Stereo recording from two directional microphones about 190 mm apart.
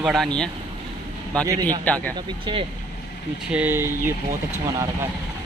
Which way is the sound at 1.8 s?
10° left (ahead or behind).